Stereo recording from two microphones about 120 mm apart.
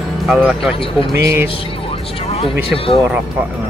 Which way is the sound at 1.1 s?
25° right (ahead or behind).